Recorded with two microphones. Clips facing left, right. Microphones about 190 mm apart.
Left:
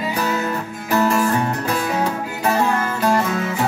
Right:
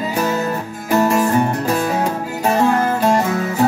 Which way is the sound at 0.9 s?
20° right (ahead or behind).